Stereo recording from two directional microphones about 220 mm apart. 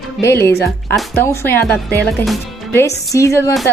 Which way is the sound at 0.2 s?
10° left (ahead or behind).